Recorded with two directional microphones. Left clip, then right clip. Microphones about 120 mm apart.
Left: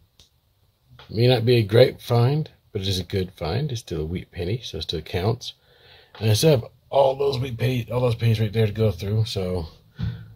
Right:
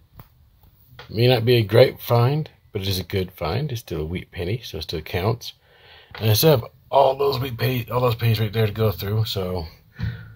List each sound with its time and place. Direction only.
1.1 s speech: 15° left (ahead or behind)
7.0 s speech: 5° right (ahead or behind)
9.5 s speech: 30° left (ahead or behind)